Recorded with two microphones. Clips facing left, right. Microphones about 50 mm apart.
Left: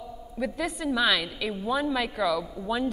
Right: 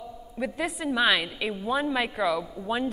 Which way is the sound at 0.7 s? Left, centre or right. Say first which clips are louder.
Right 2 dB; centre.